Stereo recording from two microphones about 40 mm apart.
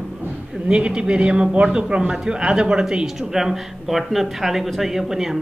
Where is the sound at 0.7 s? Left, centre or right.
Right.